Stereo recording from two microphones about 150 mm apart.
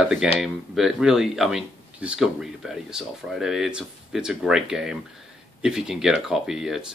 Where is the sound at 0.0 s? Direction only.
5° right (ahead or behind).